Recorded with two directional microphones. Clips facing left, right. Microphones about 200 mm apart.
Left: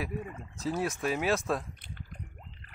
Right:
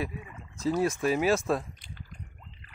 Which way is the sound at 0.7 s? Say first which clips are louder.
Right 5 dB; 5° left (ahead or behind).